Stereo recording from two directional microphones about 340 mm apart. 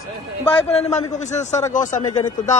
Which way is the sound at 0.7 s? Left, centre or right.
Centre.